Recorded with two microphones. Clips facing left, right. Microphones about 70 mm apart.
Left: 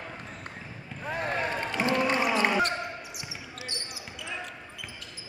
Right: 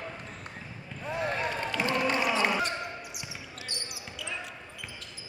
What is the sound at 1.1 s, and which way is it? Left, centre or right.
Run, left.